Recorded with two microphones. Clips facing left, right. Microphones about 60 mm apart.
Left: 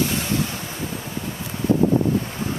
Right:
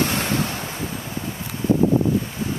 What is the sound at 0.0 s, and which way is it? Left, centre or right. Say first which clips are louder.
Waves: right 1 dB; right.